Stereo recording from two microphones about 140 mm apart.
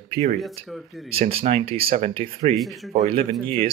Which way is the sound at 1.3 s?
45° right (ahead or behind).